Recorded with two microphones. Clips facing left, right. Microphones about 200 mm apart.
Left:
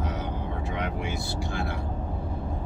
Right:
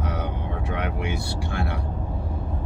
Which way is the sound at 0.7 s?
60° right (ahead or behind).